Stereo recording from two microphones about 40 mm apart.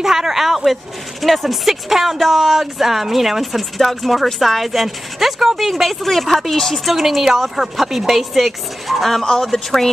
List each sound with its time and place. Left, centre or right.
0.0 s speech: centre
9.2 s speech: centre
9.5 s speech: centre